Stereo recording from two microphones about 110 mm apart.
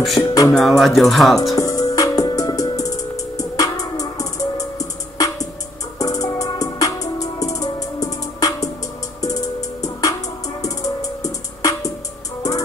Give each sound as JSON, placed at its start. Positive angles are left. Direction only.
{"t": 0.2, "sound": "music", "side_deg": 20}
{"t": 0.5, "sound": "music", "side_deg": 0}
{"t": 1.5, "sound": "music", "side_deg": 30}